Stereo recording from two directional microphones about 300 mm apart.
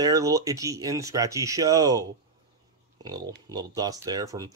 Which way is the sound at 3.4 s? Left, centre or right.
Centre.